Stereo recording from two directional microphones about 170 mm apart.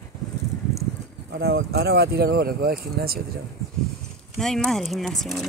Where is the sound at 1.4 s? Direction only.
70° right (ahead or behind).